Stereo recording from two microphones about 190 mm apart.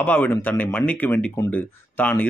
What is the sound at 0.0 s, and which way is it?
Speech, 10° left (ahead or behind).